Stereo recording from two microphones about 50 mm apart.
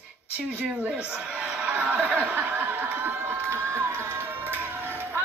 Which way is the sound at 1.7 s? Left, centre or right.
Right.